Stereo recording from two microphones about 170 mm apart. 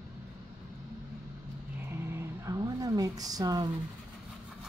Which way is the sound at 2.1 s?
15° right (ahead or behind).